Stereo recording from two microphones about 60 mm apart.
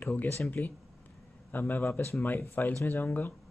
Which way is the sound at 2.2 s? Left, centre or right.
Left.